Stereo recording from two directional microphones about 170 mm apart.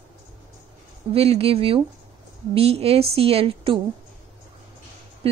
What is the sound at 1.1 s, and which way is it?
Speech, 35° right (ahead or behind).